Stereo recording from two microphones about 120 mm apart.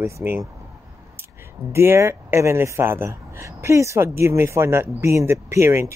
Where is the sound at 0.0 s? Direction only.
20° right (ahead or behind).